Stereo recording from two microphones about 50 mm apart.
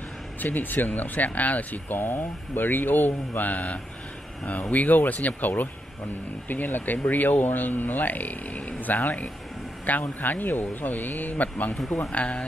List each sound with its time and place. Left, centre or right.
0.4 s speech: left
2.0 s speech: left
11.7 s speech: centre
12.1 s speech: left